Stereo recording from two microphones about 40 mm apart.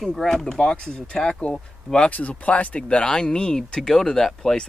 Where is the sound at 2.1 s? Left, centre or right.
Left.